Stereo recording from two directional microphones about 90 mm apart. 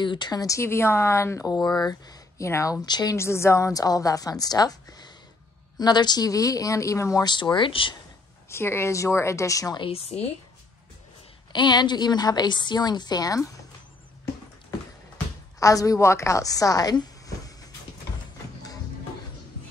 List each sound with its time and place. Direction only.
0.0 s a woman's voice: 60° left (ahead or behind)
0.6 s a woman's voice: 30° left (ahead or behind)
1.8 s speech: 45° left (ahead or behind)
2.4 s a woman's voice: 35° left (ahead or behind)
2.8 s a woman's voice: 50° left (ahead or behind)
3.2 s a woman's voice: 30° left (ahead or behind)
7.2 s speech: 55° left (ahead or behind)
8.5 s a woman's voice: 30° left (ahead or behind)
9.8 s a woman's voice: 90° left
11.5 s a woman's voice: 55° left (ahead or behind)
15.6 s a woman's voice: 40° left (ahead or behind)